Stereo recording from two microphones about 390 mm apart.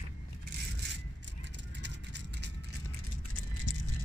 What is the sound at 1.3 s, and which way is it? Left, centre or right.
Vehicle, right.